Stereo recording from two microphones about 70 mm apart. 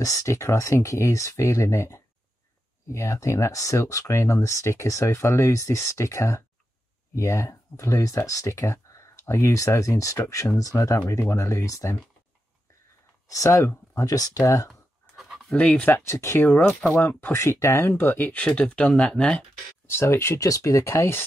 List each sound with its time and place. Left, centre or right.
0.0 s speech: left
11.1 s speech: left
13.3 s speech: left
14.0 s speech: left
15.1 s a sound: centre
15.5 s speech: centre
15.9 s speech: left
17.0 s speech: left
17.3 s speech: left; by 19.4 s centre
19.9 s speech: left
20.3 s speech: left